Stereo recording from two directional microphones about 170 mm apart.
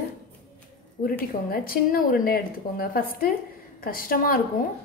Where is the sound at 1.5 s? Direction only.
60° left (ahead or behind).